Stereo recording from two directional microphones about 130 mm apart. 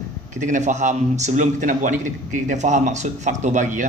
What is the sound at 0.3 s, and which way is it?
A man's voice, 75° right (ahead or behind).